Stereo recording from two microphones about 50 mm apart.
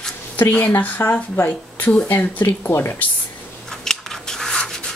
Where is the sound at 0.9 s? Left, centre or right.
Left.